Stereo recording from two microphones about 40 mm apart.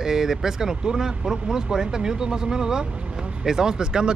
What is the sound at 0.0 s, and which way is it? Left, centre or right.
Speech, centre.